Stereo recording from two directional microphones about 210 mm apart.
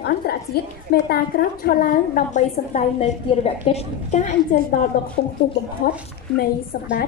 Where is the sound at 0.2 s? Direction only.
45° left (ahead or behind).